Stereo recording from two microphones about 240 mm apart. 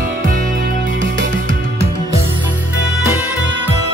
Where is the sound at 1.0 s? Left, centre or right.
Right.